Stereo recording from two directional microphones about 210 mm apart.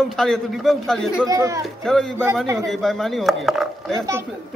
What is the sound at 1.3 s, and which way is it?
Speech, 15° right (ahead or behind).